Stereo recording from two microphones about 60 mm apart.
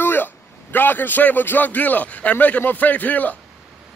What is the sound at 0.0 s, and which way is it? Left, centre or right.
A man's voice, left.